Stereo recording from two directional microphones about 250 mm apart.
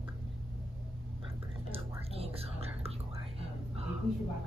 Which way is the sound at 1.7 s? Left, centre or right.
Right.